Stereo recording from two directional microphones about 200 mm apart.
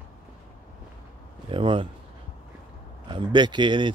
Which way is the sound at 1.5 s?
25° right (ahead or behind).